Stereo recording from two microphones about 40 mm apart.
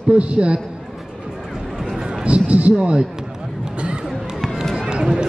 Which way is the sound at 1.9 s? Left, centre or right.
Centre.